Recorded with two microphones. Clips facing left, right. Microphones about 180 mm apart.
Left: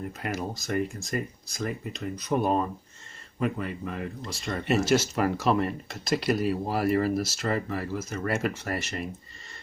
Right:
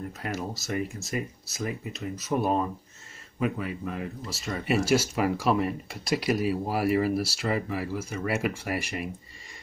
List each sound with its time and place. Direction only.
0.2 s speech: centre (ahead or behind)